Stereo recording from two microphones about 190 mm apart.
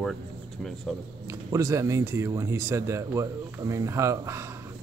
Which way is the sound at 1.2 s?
15° right (ahead or behind).